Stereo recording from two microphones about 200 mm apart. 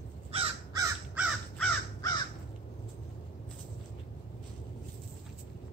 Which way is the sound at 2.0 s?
20° left (ahead or behind).